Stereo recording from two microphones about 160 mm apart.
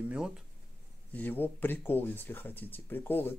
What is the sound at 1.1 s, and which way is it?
Speech, 10° left (ahead or behind).